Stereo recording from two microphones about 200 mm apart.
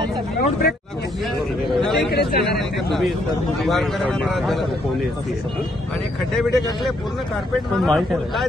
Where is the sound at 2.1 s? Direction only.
55° left (ahead or behind).